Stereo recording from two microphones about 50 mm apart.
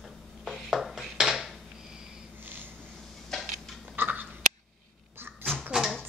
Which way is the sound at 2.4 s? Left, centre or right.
Right.